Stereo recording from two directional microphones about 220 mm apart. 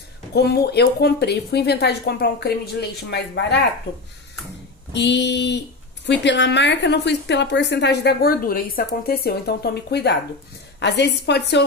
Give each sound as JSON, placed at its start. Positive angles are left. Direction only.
{"t": 0.3, "sound": "a woman's voice", "side_deg": 45}
{"t": 4.9, "sound": "a woman's voice", "side_deg": 55}